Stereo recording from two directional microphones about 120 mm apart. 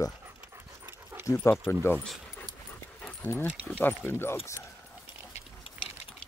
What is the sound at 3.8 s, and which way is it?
Speech, 15° left (ahead or behind).